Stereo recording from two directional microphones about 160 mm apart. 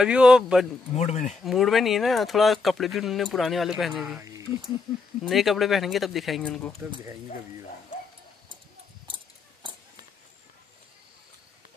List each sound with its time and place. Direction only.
0.0 s speech: 5° right (ahead or behind)
0.9 s speech: 45° left (ahead or behind)
1.4 s speech: centre (ahead or behind)
4.2 s speech: 20° right (ahead or behind)
5.2 s speech: centre (ahead or behind)